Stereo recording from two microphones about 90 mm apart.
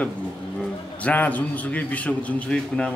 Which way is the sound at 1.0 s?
20° left (ahead or behind).